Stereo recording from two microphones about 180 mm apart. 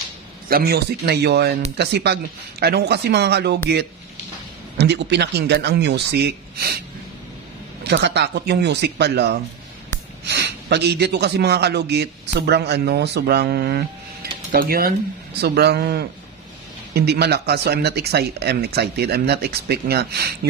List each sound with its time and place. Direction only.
0.5 s a man's voice: 60° right (ahead or behind)
4.7 s speech: 70° right (ahead or behind)
7.8 s a man's voice: 70° right (ahead or behind)